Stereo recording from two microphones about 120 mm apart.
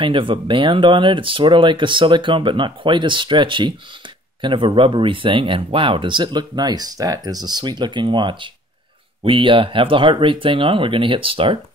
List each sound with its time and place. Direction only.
0.0 s speech: 45° right (ahead or behind)